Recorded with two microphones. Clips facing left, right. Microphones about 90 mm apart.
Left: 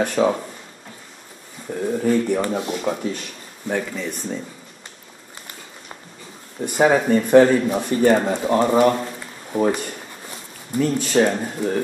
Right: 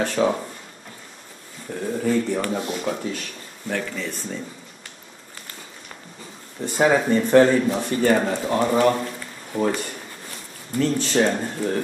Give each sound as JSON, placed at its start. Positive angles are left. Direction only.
{"t": 0.0, "sound": "speech", "side_deg": 15}
{"t": 2.0, "sound": "speech", "side_deg": 15}
{"t": 6.6, "sound": "speech", "side_deg": 15}